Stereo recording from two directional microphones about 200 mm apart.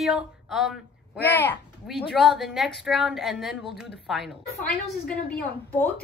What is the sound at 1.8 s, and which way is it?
A woman's voice, centre (ahead or behind).